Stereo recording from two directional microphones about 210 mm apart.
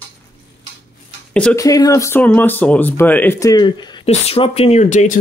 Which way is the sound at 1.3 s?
5° left (ahead or behind).